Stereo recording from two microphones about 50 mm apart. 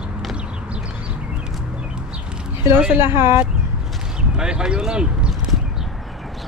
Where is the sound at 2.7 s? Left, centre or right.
Right.